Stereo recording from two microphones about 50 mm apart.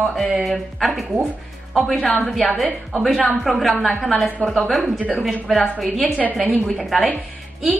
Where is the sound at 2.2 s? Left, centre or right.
Centre.